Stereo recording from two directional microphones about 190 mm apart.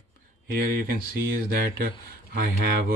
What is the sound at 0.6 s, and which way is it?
Speech, 50° right (ahead or behind).